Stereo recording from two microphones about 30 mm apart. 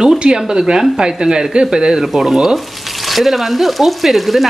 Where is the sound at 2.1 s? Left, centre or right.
Centre.